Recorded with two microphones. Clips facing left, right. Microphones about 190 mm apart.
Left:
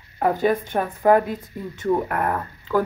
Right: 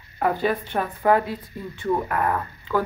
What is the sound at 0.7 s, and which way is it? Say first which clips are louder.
Speech: left 2 dB; 25° left (ahead or behind).